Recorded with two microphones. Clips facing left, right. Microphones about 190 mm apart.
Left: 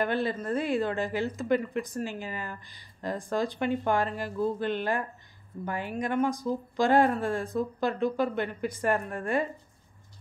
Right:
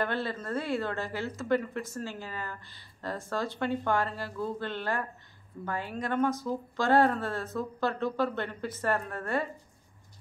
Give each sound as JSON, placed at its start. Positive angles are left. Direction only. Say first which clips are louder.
{"t": 0.0, "sound": "a woman's voice", "louder": "left 4 dB", "side_deg": 15}